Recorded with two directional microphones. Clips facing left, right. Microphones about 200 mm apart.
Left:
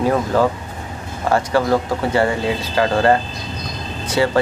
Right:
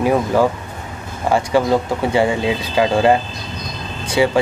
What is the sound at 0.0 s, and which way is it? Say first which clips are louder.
Speech: right 1 dB; 15° right (ahead or behind).